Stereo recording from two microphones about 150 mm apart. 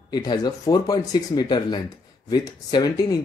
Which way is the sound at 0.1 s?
25° left (ahead or behind).